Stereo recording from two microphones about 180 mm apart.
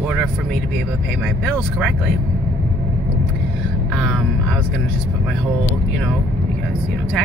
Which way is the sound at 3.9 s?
Centre (ahead or behind).